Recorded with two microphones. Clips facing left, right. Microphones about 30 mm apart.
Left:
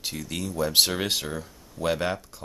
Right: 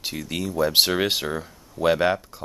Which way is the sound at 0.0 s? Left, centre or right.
Centre.